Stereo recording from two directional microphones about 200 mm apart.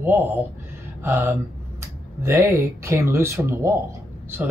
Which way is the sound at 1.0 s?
10° right (ahead or behind).